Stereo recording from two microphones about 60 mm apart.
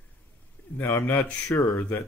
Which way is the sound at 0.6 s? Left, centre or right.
Left.